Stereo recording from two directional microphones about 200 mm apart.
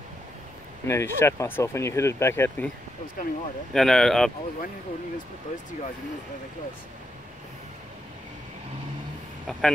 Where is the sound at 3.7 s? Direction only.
Centre (ahead or behind).